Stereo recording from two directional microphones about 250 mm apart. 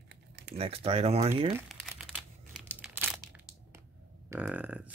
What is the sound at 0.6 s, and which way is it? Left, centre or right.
Speech, right.